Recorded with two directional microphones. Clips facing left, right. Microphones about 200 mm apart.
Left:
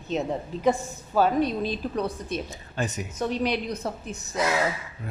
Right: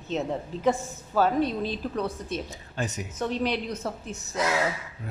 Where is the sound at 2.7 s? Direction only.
60° left (ahead or behind).